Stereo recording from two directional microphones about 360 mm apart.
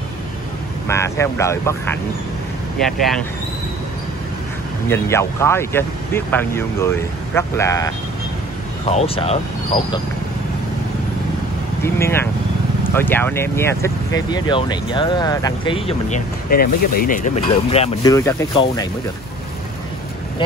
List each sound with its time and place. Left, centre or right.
0.8 s speech: centre
4.8 s speech: centre
11.8 s speech: centre